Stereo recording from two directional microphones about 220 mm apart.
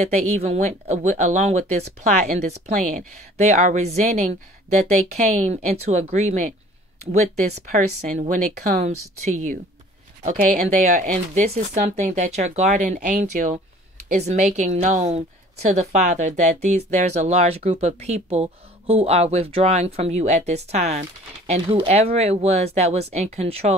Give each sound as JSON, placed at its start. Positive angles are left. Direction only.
{"t": 0.3, "sound": "a woman's voice", "side_deg": -30}
{"t": 7.7, "sound": "a woman's voice", "side_deg": -35}
{"t": 8.9, "sound": "speech", "side_deg": -85}
{"t": 9.3, "sound": "a woman's voice", "side_deg": -35}